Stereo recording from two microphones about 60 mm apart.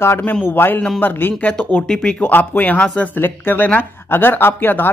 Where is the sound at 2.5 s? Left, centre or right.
Left.